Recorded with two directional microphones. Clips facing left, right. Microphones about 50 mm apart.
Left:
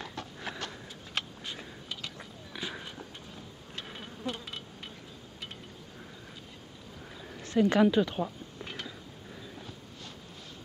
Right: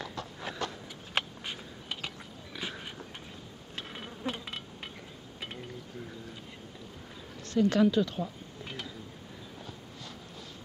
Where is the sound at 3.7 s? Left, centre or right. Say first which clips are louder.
Right 1 dB; centre.